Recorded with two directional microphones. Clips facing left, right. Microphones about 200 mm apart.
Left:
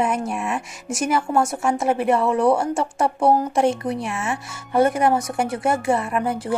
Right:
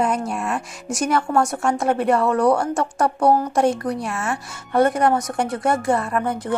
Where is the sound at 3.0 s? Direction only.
25° left (ahead or behind).